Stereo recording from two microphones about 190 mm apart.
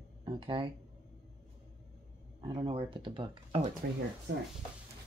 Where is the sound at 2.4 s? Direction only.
25° right (ahead or behind).